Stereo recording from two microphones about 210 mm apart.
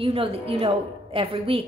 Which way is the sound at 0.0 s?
25° right (ahead or behind).